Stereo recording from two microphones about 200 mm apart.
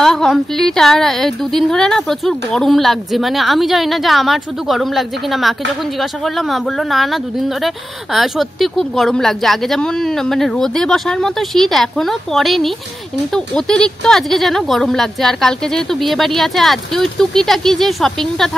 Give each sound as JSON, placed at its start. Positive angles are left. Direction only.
{"t": 0.0, "sound": "speech", "side_deg": 0}